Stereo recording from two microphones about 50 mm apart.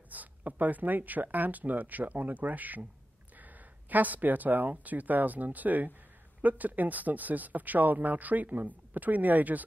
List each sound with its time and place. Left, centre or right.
0.1 s speech: right